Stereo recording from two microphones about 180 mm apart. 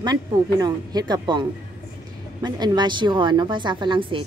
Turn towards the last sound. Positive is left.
turn(degrees=-30)  # may be behind; listen again after turning